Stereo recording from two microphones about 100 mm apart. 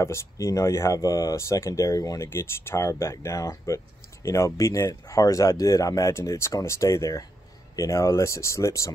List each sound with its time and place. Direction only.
0.0 s speech: 30° left (ahead or behind)